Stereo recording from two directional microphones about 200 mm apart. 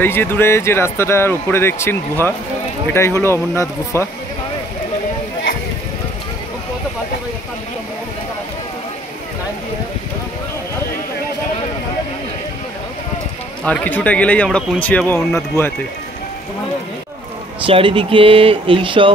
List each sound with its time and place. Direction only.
0.0 s speech: 10° left (ahead or behind)
13.7 s speech: 5° left (ahead or behind)
17.6 s speech: 25° right (ahead or behind)